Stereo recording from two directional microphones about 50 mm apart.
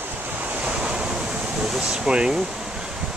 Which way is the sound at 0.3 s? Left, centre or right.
Right.